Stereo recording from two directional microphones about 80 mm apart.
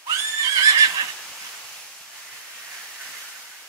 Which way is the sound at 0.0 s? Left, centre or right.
Right.